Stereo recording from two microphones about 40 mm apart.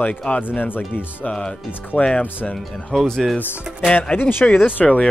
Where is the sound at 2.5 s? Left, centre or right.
Centre.